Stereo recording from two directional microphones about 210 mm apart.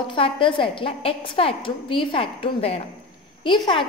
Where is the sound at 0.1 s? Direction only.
25° left (ahead or behind).